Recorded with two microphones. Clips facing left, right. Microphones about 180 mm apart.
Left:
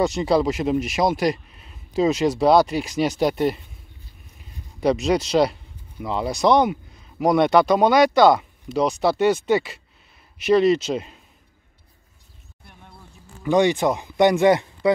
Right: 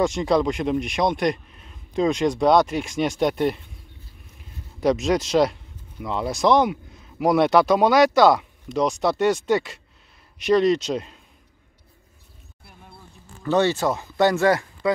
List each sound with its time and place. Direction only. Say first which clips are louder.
0.0 s speech: left 1 dB; centre (ahead or behind)
13.4 s speech: left 2 dB; 15° left (ahead or behind)